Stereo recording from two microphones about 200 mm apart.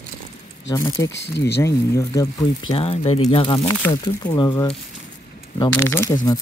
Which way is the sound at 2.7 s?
30° left (ahead or behind).